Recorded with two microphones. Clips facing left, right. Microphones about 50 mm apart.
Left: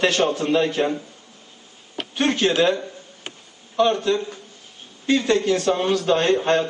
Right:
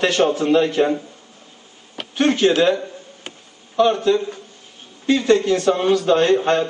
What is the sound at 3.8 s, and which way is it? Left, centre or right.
A man's voice, centre.